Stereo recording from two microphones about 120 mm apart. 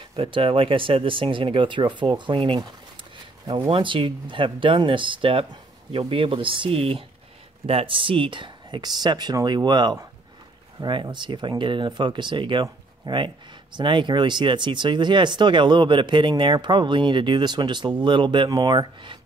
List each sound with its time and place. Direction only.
0.1 s speech: 45° right (ahead or behind)